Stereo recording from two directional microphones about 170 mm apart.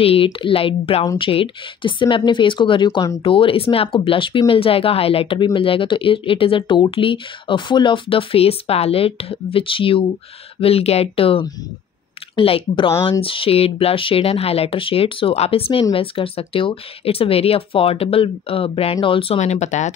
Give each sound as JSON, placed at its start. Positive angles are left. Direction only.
{"t": 0.0, "sound": "speech", "side_deg": 35}